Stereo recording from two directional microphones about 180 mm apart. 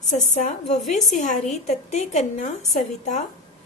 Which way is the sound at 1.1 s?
45° left (ahead or behind).